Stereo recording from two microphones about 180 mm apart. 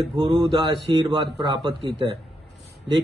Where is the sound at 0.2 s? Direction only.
25° right (ahead or behind).